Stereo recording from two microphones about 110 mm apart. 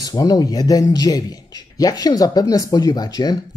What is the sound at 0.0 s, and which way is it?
Speech, 35° left (ahead or behind).